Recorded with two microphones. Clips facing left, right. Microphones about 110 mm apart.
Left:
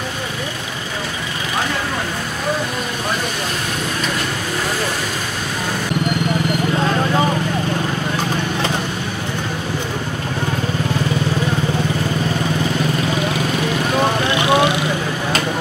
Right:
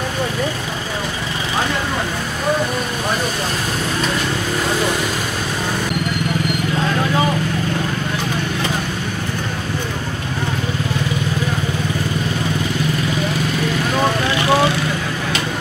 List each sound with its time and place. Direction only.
14.4 s vehicle: 20° left (ahead or behind)